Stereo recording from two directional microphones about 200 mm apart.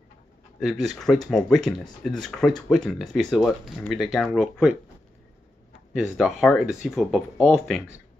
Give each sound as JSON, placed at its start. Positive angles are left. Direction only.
{"t": 0.6, "sound": "speech", "side_deg": 0}
{"t": 6.1, "sound": "speech", "side_deg": 0}